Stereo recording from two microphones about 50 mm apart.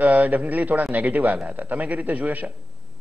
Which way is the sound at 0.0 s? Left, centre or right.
Right.